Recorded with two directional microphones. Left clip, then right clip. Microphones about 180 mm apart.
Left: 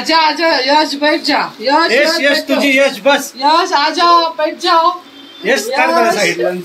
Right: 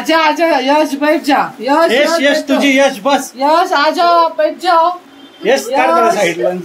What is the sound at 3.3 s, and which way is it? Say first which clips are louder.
A woman's voice: even; 70° right (ahead or behind).